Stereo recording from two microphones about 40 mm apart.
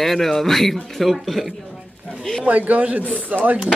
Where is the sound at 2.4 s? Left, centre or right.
Right.